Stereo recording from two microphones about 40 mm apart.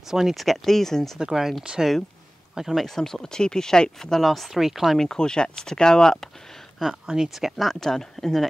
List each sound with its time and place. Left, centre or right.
0.1 s speech: centre
0.4 s speech: centre
1.2 s speech: centre
2.7 s speech: centre
3.0 s speech: centre
4.9 s speech: centre
7.1 s speech: centre
7.3 s speech: centre
7.8 s speech: centre